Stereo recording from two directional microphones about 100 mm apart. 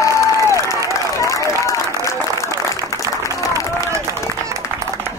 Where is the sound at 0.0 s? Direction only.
30° left (ahead or behind).